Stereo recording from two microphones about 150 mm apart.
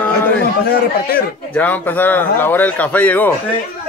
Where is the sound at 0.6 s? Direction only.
90° left.